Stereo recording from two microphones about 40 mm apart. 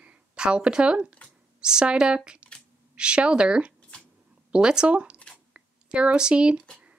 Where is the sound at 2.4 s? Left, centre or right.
Right.